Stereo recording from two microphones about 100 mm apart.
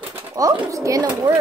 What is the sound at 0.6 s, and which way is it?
Speech, 30° right (ahead or behind).